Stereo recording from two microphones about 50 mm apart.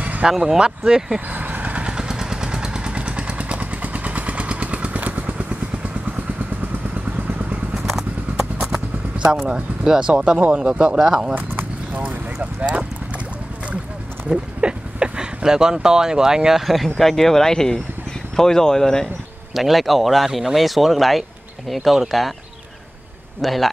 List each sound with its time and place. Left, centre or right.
0.4 s speech: centre
1.3 s vehicle: right
7.1 s vehicle: right
7.7 s clip-clop: centre
9.5 s speech: right
11.3 s a sound: right
12.1 s speech: right
14.3 s speech: centre
19.5 s speech: centre
23.4 s speech: centre